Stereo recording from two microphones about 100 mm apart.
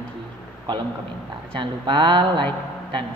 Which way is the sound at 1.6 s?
55° right (ahead or behind).